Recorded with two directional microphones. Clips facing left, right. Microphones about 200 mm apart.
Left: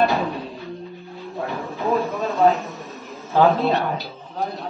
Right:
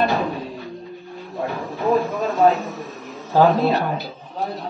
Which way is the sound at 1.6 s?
Centre (ahead or behind).